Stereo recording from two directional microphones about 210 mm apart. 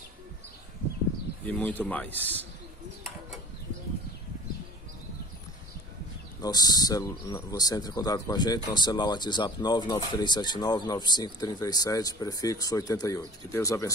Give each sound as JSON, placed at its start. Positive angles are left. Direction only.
{"t": 1.4, "sound": "speech", "side_deg": 5}
{"t": 6.4, "sound": "speech", "side_deg": 20}